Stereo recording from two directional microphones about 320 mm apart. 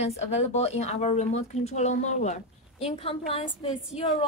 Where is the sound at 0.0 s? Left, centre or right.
Centre.